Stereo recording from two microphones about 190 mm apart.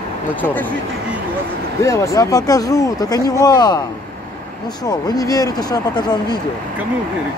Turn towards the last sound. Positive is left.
turn(degrees=20)  # may be behind; listen again after turning